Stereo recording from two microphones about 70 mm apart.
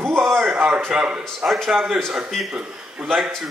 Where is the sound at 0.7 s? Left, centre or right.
Centre.